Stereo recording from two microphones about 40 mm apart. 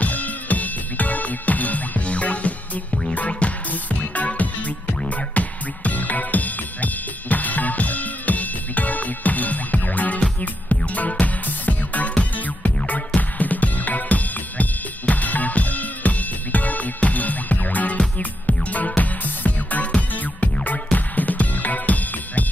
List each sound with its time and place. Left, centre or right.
0.0 s music: left
2.9 s music: centre
3.2 s music: left